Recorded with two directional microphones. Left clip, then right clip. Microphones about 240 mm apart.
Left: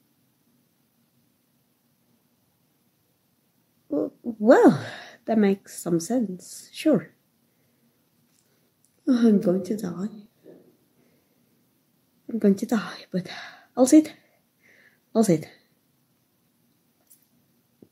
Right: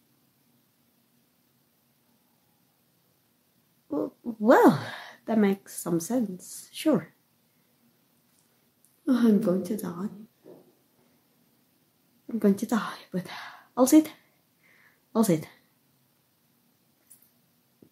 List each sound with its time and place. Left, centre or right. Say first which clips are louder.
3.9 s speech: left 4 dB; centre
9.0 s speech: left 3 dB; centre
12.4 s speech: left 3 dB; centre
15.1 s speech: left 4 dB; centre